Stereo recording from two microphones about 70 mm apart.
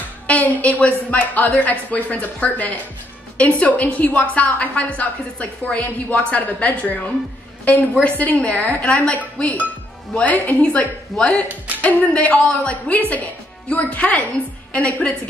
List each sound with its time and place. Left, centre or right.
0.3 s a woman's voice: left
11.4 s a woman's voice: centre
11.8 s a woman's voice: left